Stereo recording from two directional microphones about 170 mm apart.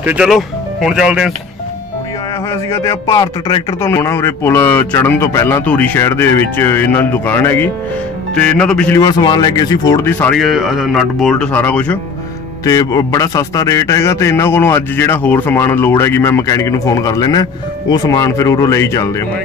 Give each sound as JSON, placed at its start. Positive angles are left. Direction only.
{"t": 0.0, "sound": "speech", "side_deg": -5}
{"t": 2.5, "sound": "a man's voice", "side_deg": 20}
{"t": 8.9, "sound": "a man's voice", "side_deg": 25}
{"t": 12.6, "sound": "a man's voice", "side_deg": 20}